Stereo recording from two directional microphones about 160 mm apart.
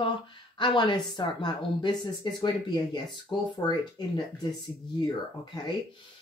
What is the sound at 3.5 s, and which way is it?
Speech, 25° left (ahead or behind).